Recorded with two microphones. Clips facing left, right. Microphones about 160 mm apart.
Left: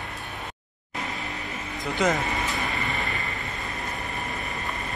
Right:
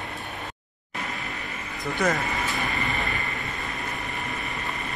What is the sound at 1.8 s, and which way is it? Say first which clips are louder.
Music: left 1 dB; 20° left (ahead or behind).